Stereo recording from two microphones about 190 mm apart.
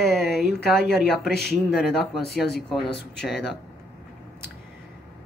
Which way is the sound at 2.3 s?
60° left (ahead or behind).